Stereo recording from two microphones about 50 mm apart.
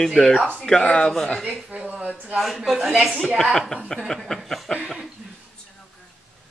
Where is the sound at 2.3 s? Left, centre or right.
Centre.